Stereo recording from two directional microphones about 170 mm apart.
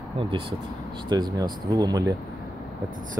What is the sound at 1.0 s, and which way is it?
Speech, 25° right (ahead or behind).